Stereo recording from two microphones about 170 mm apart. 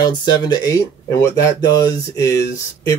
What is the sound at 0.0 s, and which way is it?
Speech, 25° left (ahead or behind).